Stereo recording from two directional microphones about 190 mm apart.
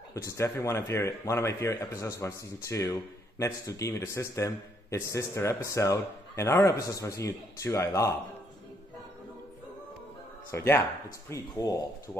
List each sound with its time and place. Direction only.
0.1 s speech: 15° left (ahead or behind)
10.5 s speech: 15° left (ahead or behind)